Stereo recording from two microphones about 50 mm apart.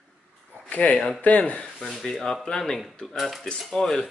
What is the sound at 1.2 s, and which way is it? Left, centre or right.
Speech, left.